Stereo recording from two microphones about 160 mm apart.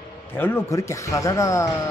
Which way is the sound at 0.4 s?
15° left (ahead or behind).